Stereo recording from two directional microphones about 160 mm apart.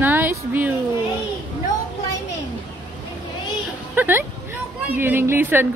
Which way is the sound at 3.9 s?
10° right (ahead or behind).